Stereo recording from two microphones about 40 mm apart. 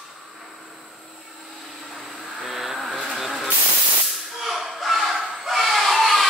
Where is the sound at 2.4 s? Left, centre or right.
Centre.